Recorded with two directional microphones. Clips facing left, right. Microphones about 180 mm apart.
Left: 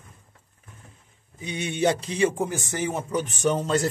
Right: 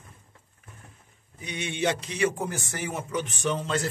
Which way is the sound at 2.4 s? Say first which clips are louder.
Left 5 dB; 15° left (ahead or behind).